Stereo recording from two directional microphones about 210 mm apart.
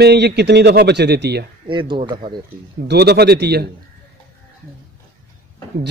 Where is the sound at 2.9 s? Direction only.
50° right (ahead or behind).